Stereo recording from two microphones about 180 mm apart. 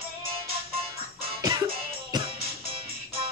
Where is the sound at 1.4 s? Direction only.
20° right (ahead or behind).